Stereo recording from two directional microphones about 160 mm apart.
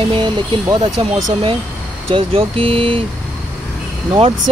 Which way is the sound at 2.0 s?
35° right (ahead or behind).